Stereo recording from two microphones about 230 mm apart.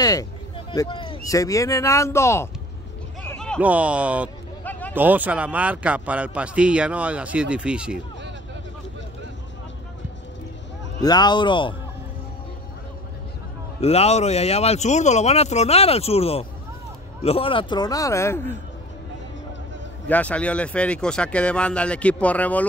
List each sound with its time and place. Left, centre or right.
0.0 s a sound: centre
1.2 s a man's voice: centre
3.3 s a sound: centre
3.6 s a man's voice: centre
4.6 s a sound: centre
4.9 s a man's voice: centre
11.0 s speech: centre
13.7 s a man's voice: left; by 18.6 s centre
20.1 s a man's voice: centre